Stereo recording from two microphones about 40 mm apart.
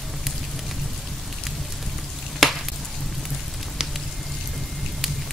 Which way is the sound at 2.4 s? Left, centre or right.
Centre.